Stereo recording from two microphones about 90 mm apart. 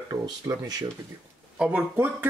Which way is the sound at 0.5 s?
45° right (ahead or behind).